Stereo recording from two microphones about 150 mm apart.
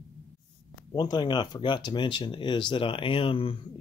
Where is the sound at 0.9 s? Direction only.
30° left (ahead or behind).